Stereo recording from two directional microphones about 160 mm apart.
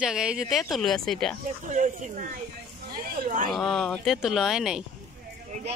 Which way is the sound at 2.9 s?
65° right (ahead or behind).